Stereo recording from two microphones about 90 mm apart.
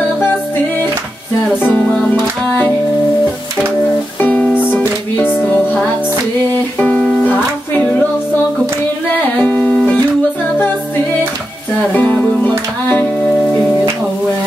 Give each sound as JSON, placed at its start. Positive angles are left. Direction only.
{"t": 1.6, "sound": "music", "side_deg": 15}
{"t": 4.2, "sound": "music", "side_deg": 15}
{"t": 6.8, "sound": "music", "side_deg": 15}
{"t": 9.1, "sound": "music", "side_deg": 15}
{"t": 11.9, "sound": "music", "side_deg": 20}